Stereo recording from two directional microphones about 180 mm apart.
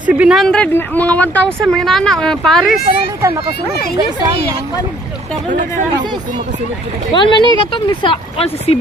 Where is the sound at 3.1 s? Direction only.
15° right (ahead or behind).